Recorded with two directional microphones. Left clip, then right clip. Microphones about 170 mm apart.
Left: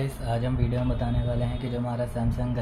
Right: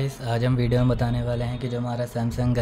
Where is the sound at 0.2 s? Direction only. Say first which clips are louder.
Right 6 dB; 50° right (ahead or behind); by 1.0 s 90° right.